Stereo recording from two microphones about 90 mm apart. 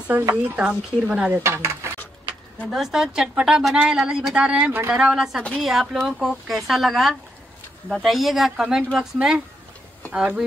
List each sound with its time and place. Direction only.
0.2 s speech: 25° right (ahead or behind)
0.7 s a woman's voice: 10° right (ahead or behind)
1.3 s speech: 30° right (ahead or behind)
2.7 s a woman's voice: 5° right (ahead or behind)